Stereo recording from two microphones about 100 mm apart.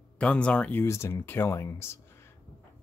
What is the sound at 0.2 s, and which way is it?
Speech, 10° left (ahead or behind).